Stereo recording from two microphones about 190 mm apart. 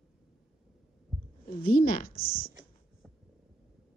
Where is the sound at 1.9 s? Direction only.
50° left (ahead or behind).